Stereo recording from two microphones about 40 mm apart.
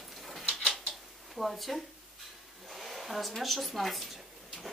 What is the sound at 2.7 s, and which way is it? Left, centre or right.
Hair dryer, centre.